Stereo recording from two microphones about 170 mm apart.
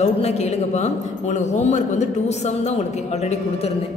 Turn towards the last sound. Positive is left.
turn(degrees=40)  # may be behind; listen again after turning